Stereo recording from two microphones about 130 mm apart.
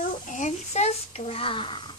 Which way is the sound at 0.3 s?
65° left (ahead or behind).